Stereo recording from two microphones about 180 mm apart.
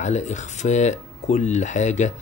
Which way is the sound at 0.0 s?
40° left (ahead or behind).